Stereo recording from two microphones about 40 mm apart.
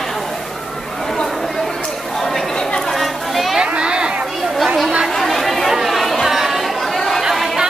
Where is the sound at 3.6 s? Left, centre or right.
Right.